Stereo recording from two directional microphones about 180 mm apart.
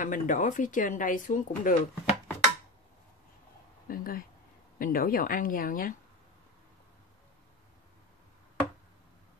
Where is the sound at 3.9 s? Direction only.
55° left (ahead or behind).